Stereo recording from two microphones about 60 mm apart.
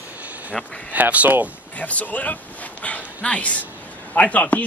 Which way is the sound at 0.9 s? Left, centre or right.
Right.